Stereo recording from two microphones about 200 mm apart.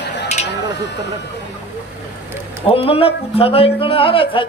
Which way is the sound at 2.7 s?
30° left (ahead or behind).